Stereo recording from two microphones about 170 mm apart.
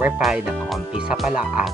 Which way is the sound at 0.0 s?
5° right (ahead or behind).